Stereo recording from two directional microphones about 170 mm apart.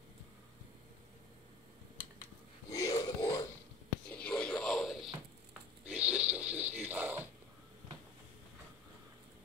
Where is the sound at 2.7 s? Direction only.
20° left (ahead or behind).